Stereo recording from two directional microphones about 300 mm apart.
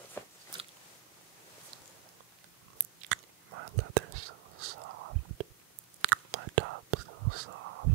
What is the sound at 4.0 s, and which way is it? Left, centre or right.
Whispering, right.